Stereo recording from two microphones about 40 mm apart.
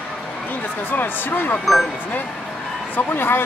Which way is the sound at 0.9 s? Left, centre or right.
Left.